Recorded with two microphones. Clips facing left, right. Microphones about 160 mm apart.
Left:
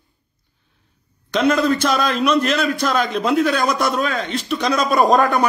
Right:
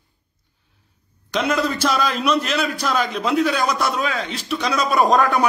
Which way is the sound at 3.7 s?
55° left (ahead or behind).